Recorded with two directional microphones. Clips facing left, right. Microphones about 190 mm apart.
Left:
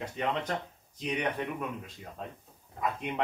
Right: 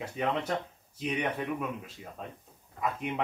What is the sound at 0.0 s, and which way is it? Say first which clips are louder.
Speech: right 1 dB; 10° right (ahead or behind).